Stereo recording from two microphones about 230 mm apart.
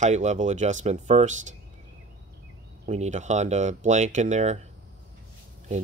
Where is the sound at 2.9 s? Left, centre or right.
Right.